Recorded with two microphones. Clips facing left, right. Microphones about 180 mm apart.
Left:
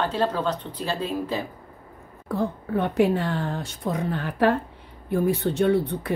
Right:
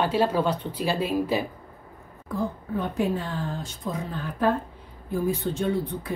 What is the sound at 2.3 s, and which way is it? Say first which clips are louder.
A woman's voice: left 3 dB; 70° left (ahead or behind).